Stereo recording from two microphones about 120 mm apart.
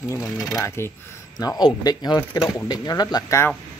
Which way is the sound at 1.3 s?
30° left (ahead or behind).